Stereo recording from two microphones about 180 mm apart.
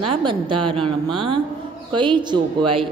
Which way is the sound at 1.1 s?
30° right (ahead or behind).